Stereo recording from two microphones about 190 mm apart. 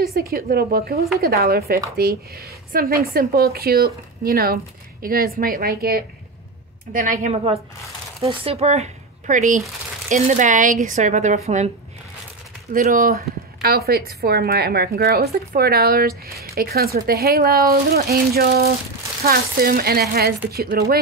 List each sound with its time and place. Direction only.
0.0 s speech: 55° right (ahead or behind)
8.2 s speech: 30° right (ahead or behind)
12.7 s speech: 45° right (ahead or behind)